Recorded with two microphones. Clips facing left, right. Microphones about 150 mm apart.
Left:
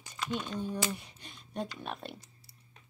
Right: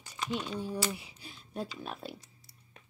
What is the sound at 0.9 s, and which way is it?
Speech, 5° right (ahead or behind).